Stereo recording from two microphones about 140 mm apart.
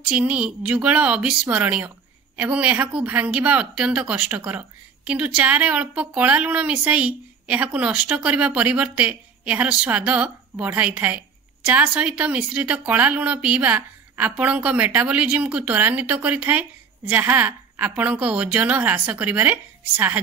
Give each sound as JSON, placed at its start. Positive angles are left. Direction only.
{"t": 0.1, "sound": "speech", "side_deg": -10}